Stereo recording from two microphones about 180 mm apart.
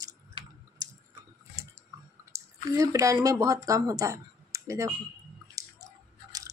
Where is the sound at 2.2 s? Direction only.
15° right (ahead or behind).